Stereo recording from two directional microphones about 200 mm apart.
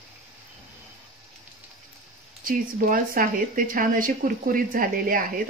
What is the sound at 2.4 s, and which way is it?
Speech, 45° right (ahead or behind).